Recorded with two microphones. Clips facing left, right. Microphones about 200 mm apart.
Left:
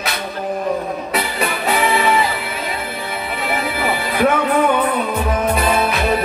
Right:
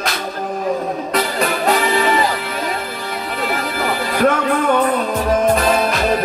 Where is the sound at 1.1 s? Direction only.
Centre (ahead or behind).